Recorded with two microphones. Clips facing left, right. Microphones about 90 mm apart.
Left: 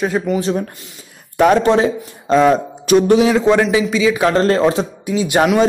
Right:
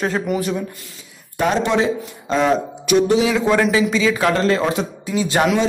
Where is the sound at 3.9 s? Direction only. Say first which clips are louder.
Left 3 dB; 10° left (ahead or behind).